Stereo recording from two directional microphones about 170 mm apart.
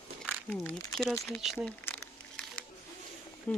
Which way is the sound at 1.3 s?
Centre (ahead or behind).